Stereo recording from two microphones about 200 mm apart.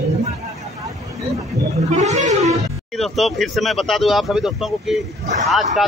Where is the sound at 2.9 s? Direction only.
Centre (ahead or behind).